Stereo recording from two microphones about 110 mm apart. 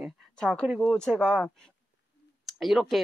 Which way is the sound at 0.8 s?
10° left (ahead or behind).